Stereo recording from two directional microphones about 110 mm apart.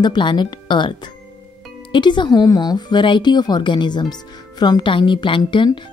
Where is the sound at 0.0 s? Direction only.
45° left (ahead or behind).